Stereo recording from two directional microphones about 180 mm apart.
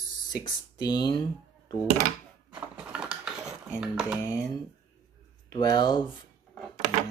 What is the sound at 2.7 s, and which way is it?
Dishes, 5° right (ahead or behind).